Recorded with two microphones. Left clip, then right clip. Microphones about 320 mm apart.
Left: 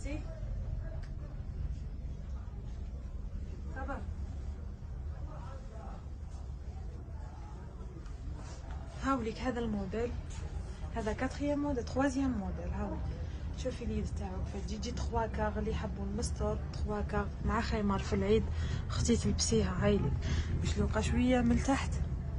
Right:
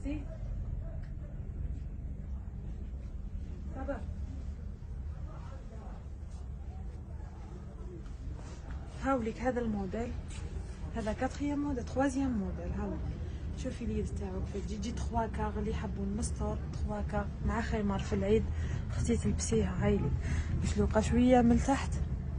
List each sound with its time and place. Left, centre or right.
9.0 s a sound: centre
9.4 s speech: centre
11.0 s speech: centre
20.3 s speech: centre